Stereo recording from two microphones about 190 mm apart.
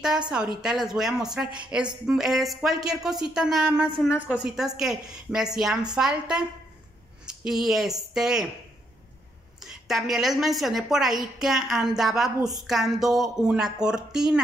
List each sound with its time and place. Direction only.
0.6 s speech: 5° right (ahead or behind)
9.6 s speech: centre (ahead or behind)